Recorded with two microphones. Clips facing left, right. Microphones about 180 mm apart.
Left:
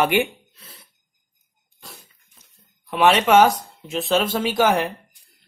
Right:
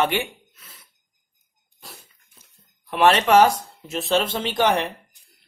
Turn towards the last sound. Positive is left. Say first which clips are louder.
# left 2 dB
turn(degrees=0)  # may be behind; listen again after turning